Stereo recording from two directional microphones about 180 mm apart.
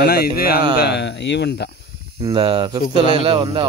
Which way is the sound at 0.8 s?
70° left (ahead or behind).